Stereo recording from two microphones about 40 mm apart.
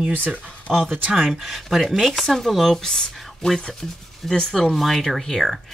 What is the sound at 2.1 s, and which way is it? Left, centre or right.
Speech, centre.